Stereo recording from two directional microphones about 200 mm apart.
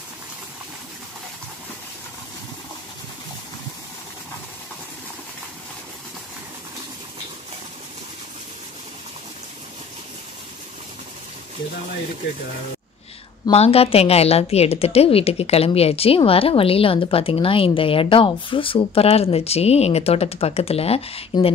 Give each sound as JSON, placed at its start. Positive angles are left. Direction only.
{"t": 13.5, "sound": "a woman's voice", "side_deg": 30}